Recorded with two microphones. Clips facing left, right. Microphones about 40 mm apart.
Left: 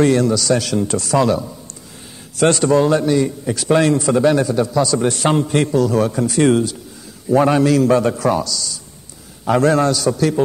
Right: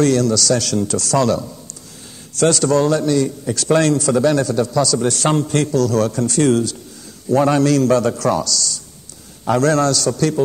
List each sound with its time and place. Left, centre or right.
0.0 s a man's voice: left
3.9 s a man's voice: left